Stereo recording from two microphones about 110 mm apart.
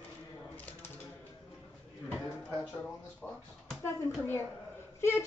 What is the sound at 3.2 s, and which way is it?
Speech, 15° left (ahead or behind).